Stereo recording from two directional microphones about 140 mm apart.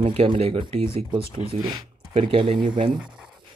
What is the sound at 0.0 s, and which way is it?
Speech, 45° right (ahead or behind).